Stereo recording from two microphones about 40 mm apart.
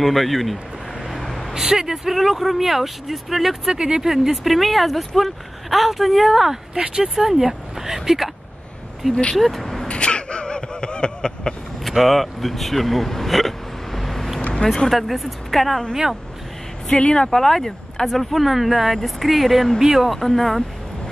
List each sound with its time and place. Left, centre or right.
0.0 s speech: centre
1.0 s vehicle: centre
1.5 s speech: centre
3.7 s speech: centre
4.1 s speech: centre
9.1 s speech: left
9.4 s speech: centre
9.8 s a sound: left
12.0 s speech: centre
17.0 s speech: centre
19.8 s speech: centre
20.1 s speech: centre